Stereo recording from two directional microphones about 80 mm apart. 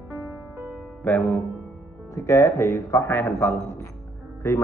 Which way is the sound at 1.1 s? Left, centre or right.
Left.